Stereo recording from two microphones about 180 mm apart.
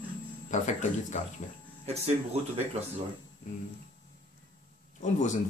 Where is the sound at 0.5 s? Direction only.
40° left (ahead or behind).